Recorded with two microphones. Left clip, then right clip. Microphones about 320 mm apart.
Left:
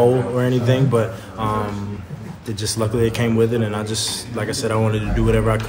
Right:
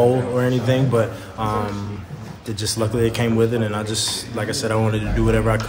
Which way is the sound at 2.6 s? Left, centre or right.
Centre.